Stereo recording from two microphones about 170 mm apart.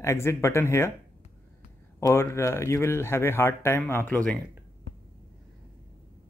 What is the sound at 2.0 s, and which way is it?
Speech, 15° left (ahead or behind).